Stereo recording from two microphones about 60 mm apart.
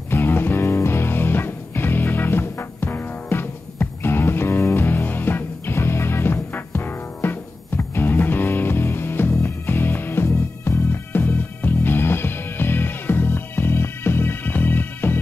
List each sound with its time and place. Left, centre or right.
0.1 s music: left